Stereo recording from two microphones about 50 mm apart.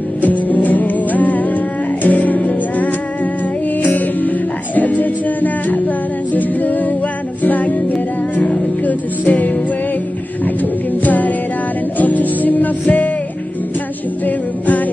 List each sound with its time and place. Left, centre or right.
0.2 s music: left
14.2 s music: left